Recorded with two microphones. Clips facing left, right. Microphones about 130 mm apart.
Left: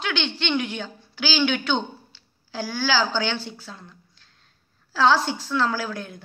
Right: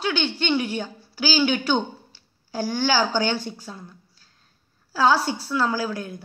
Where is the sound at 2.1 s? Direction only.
40° right (ahead or behind).